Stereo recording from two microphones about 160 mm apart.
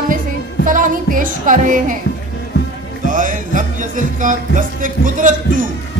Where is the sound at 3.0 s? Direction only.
55° right (ahead or behind).